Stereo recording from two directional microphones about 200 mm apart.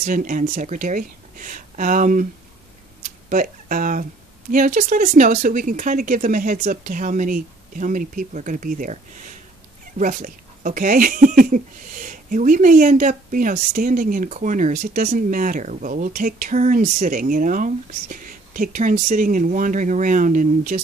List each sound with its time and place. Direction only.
0.0 s speech: 45° right (ahead or behind)
3.0 s a sound: 40° right (ahead or behind)
4.5 s speech: 40° right (ahead or behind)